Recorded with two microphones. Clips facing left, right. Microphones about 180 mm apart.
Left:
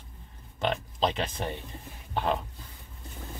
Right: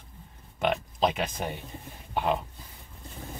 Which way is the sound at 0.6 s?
10° right (ahead or behind).